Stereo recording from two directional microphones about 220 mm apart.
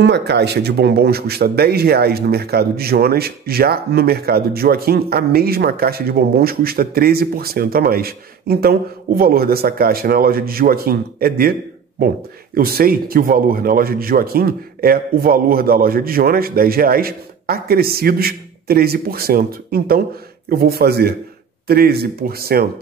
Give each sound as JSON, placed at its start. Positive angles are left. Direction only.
{"t": 0.0, "sound": "speech", "side_deg": -50}
{"t": 12.5, "sound": "speech", "side_deg": -40}